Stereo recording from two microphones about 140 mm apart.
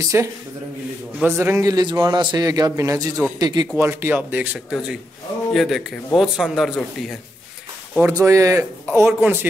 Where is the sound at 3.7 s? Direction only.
15° right (ahead or behind); by 7.1 s centre (ahead or behind).